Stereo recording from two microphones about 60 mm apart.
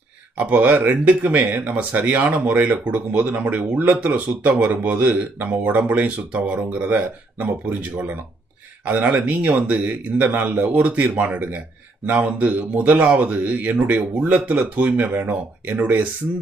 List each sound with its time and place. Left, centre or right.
0.4 s speech: right
8.8 s speech: right